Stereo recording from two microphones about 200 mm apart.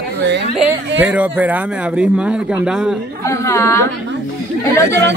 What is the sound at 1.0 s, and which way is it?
Speech, 5° right (ahead or behind).